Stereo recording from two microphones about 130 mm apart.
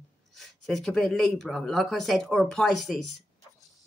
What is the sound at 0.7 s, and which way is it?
Speech, centre (ahead or behind).